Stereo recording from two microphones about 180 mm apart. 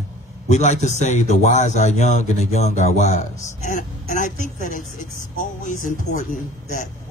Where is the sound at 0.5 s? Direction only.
40° left (ahead or behind).